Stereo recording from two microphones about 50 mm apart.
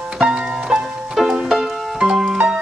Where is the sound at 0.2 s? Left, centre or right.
Centre.